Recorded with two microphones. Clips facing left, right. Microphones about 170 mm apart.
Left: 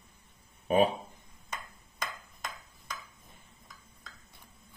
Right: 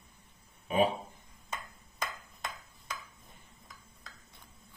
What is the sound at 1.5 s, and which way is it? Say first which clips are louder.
Ping: right 1 dB; 5° right (ahead or behind).